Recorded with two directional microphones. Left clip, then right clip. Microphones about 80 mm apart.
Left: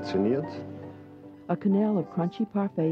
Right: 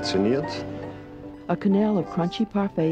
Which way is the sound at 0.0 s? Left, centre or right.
Left.